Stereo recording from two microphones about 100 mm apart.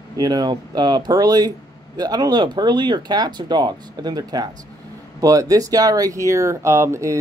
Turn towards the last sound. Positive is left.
turn(degrees=-30)  # may be behind; listen again after turning